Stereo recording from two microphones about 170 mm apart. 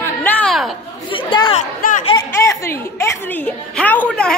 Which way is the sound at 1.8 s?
55° left (ahead or behind).